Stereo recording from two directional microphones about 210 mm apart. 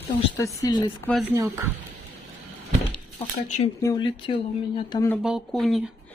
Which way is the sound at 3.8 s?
20° left (ahead or behind).